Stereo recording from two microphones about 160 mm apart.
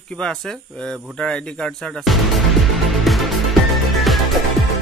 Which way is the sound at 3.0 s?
Centre (ahead or behind).